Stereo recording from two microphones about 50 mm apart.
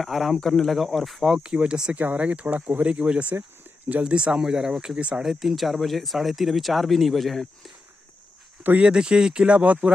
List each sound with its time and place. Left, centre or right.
0.0 s speech: centre
1.4 s speech: centre
2.0 s speech: right
2.9 s speech: right
3.3 s a sound: right
4.1 s speech: right
4.9 s speech: centre
5.2 s speech: centre
8.7 s speech: centre